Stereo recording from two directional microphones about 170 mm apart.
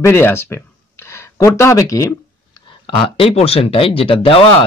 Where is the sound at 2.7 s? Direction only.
30° left (ahead or behind).